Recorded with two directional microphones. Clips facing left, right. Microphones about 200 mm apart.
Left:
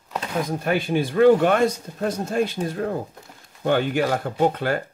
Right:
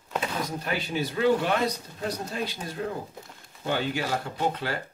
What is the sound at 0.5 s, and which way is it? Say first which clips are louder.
Speech: left 8 dB; 55° left (ahead or behind).